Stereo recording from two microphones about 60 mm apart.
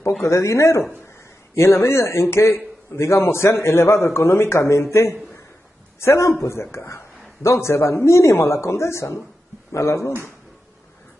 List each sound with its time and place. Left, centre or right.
0.2 s a man's voice: left
5.9 s a man's voice: left